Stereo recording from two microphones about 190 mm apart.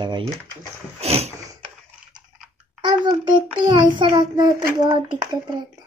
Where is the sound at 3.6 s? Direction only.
25° right (ahead or behind).